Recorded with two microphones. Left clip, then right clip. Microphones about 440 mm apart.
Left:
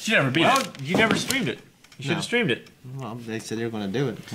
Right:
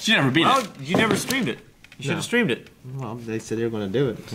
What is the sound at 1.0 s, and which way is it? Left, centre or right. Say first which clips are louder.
Speech: left 1 dB; left.